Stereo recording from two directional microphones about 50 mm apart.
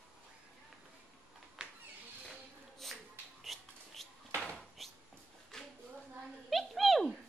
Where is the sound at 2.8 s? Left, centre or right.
Centre.